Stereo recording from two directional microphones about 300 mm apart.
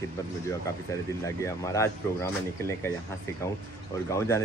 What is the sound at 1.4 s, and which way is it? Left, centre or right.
Speech, centre.